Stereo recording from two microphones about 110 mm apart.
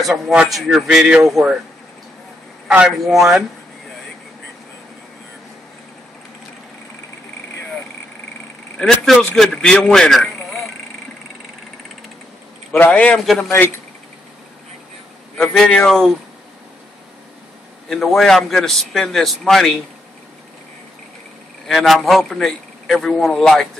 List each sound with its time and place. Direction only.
0.0 s a man's voice: 5° right (ahead or behind)
3.0 s a man's voice: centre (ahead or behind)
8.7 s a man's voice: 5° left (ahead or behind)
12.7 s a man's voice: 15° left (ahead or behind)
15.3 s a man's voice: 5° left (ahead or behind)
17.8 s a man's voice: centre (ahead or behind)
21.6 s a man's voice: centre (ahead or behind)